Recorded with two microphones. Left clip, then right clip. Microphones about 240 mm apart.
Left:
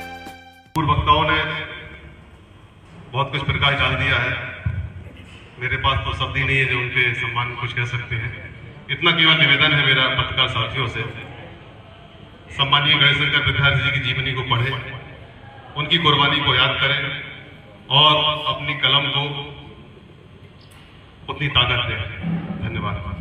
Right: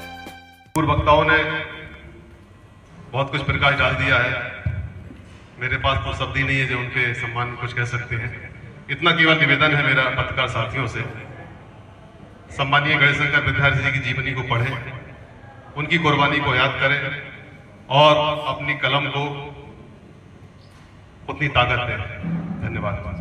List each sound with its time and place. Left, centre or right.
0.7 s a man's voice: centre
3.1 s a man's voice: centre
5.6 s a man's voice: centre
12.5 s a man's voice: centre
21.3 s a man's voice: centre